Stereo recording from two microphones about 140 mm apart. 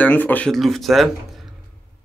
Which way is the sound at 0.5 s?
Centre (ahead or behind).